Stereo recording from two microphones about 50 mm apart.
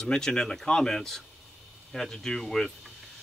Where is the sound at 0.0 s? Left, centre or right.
Centre.